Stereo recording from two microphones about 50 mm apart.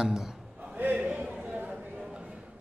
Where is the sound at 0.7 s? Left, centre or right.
Right.